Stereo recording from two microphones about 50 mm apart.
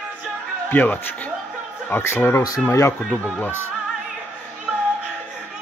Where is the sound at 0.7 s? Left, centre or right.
Left.